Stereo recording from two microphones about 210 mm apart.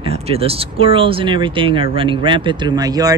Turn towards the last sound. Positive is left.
turn(degrees=-15)  # may be behind; listen again after turning